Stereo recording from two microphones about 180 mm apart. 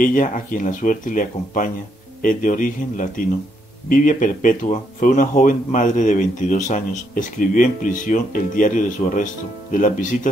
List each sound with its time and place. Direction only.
0.0 s speech: 45° left (ahead or behind)